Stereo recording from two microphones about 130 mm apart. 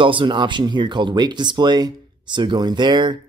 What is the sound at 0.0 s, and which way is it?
Speech, 40° right (ahead or behind).